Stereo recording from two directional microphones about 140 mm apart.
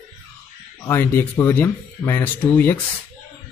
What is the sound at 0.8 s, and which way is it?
A man's voice, 15° left (ahead or behind).